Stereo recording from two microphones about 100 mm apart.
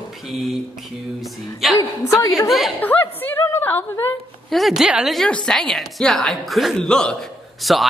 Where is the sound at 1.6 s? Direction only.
Centre (ahead or behind).